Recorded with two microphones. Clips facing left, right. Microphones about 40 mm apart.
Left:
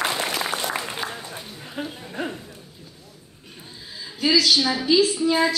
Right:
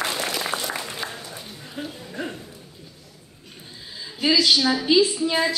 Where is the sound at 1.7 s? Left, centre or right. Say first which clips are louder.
Left 2 dB; centre.